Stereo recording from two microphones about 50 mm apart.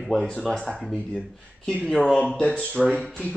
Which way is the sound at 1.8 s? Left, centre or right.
Centre.